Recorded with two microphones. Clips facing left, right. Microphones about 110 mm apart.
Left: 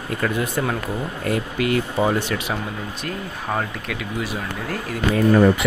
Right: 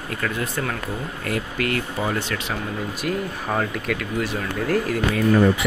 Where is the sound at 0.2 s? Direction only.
15° left (ahead or behind).